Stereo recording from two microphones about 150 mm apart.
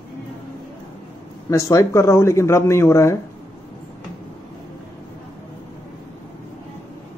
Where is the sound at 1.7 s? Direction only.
20° left (ahead or behind).